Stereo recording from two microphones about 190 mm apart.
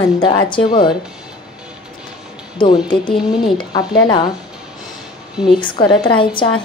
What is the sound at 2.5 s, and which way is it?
Speech, 25° left (ahead or behind).